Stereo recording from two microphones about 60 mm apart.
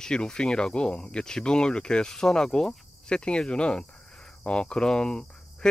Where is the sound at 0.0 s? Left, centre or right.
Centre.